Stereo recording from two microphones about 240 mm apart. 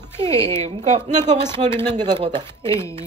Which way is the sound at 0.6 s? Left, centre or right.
Right.